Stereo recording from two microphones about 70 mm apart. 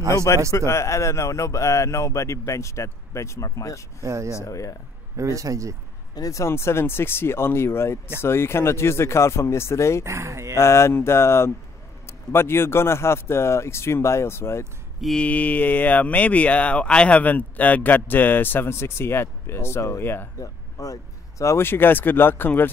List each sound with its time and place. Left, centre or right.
0.1 s speech: left
4.0 s a man's voice: right
4.4 s speech: left
5.1 s a man's voice: right
6.1 s speech: left
10.0 s a man's voice: right
10.5 s speech: left
15.1 s speech: left
20.3 s a sound: left
21.5 s speech: left